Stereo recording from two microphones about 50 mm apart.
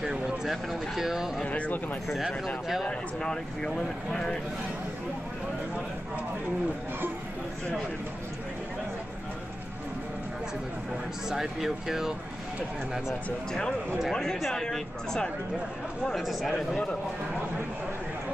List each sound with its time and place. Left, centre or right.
0.5 s speech: centre
1.4 s speech: left
2.8 s speech: centre
11.2 s speech: centre
13.5 s speech: centre
16.2 s speech: centre
16.5 s speech: centre